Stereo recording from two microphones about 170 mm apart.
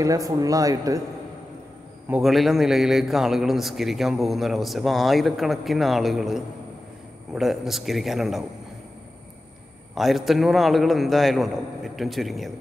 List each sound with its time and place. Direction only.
0.0 s speech: 20° right (ahead or behind)
2.0 s a man's voice: 5° right (ahead or behind)
9.9 s a man's voice: centre (ahead or behind)